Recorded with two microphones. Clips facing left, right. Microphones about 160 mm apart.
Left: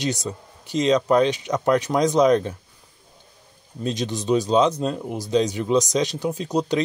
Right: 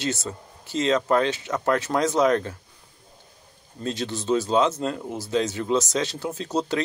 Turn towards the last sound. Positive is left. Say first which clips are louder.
# left 3 dB
turn(degrees=15)  # may be behind; listen again after turning